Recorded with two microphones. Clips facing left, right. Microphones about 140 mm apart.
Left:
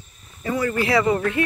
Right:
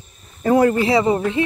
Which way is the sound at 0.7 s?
25° right (ahead or behind).